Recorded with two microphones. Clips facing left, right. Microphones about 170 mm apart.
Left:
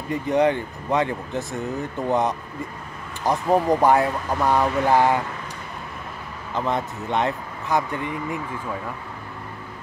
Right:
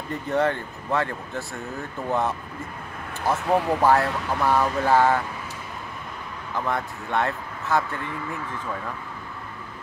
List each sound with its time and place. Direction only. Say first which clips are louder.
0.1 s speech: left 4 dB; 15° left (ahead or behind)
3.5 s speech: left 2 dB; 15° left (ahead or behind)
6.5 s speech: left 3 dB; 20° left (ahead or behind)